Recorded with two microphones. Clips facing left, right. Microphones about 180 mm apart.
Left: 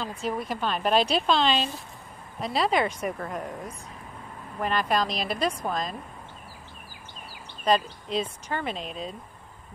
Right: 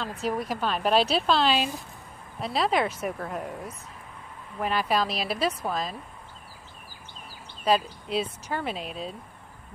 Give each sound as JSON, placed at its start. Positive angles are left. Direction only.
{"t": 0.2, "sound": "a woman's voice", "side_deg": -5}
{"t": 7.6, "sound": "speech", "side_deg": -10}